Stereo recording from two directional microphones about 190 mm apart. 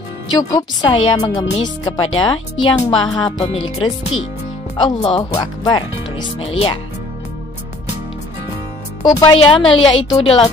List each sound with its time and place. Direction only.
0.4 s speech: 20° left (ahead or behind)
9.0 s speech: 20° left (ahead or behind)